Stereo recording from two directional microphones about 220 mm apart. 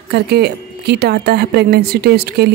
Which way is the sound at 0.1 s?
45° right (ahead or behind).